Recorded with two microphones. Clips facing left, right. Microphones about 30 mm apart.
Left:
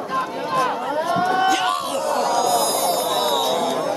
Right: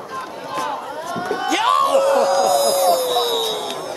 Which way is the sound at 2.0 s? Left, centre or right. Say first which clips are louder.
Right 5 dB; right.